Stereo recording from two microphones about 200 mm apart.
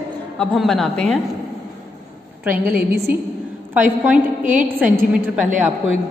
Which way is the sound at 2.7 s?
50° right (ahead or behind).